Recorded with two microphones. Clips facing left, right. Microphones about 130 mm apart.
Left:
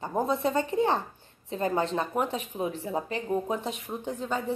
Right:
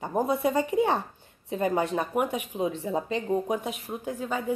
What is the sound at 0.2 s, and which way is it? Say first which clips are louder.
A woman's voice: right 2 dB; 5° right (ahead or behind).